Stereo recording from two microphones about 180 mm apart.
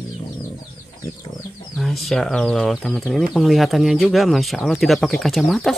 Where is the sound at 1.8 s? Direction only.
Centre (ahead or behind).